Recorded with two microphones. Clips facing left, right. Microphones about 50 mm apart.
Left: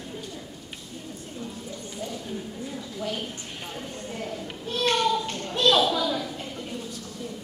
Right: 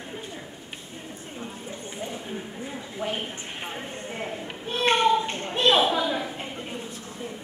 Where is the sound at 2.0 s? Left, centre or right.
Right.